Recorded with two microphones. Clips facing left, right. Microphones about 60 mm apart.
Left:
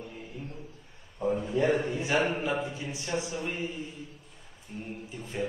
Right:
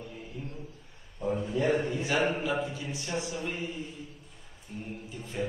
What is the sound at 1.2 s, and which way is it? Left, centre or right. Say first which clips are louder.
A man's voice: left 2 dB; left.